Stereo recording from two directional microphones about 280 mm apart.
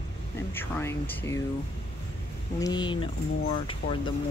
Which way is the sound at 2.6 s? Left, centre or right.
Centre.